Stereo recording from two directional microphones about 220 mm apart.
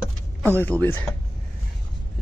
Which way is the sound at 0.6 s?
10° left (ahead or behind).